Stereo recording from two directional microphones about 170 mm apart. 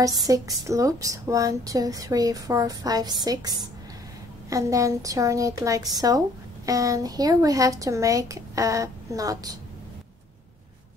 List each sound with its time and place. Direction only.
0.3 s a woman's voice: 20° right (ahead or behind)